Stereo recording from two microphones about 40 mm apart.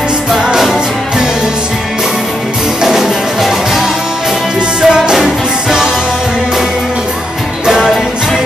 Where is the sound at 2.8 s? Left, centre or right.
Centre.